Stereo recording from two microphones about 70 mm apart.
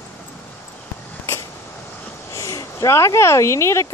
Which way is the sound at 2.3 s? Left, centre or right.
Left.